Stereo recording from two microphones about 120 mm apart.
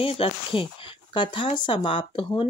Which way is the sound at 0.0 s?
50° left (ahead or behind).